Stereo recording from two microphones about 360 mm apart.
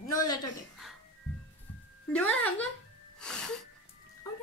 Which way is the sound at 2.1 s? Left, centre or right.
Centre.